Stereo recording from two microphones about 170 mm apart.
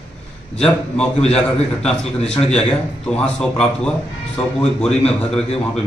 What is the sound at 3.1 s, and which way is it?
A man's voice, 5° left (ahead or behind).